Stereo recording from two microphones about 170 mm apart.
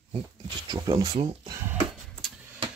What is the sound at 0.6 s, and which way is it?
Speech, 20° right (ahead or behind).